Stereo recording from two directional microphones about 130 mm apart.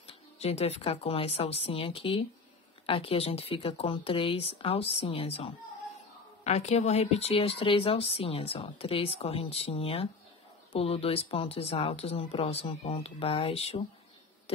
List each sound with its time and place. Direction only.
0.0 s speech: 55° left (ahead or behind)
6.4 s speech: 55° left (ahead or behind)